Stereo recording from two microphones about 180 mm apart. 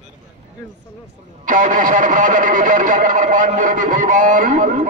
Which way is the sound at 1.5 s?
45° right (ahead or behind).